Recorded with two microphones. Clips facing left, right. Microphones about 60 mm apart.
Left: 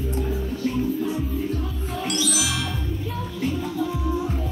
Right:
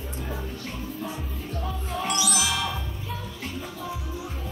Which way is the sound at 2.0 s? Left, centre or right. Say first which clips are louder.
Left 1 dB; centre.